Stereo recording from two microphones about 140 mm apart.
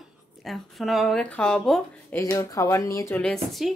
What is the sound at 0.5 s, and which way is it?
Speech, centre (ahead or behind).